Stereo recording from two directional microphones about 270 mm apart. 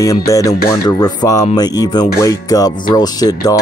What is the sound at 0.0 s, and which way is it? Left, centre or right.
Speech, centre.